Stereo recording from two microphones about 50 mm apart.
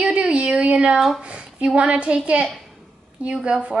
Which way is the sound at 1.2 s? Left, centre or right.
Right.